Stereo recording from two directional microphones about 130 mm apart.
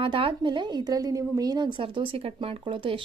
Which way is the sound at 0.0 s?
40° right (ahead or behind).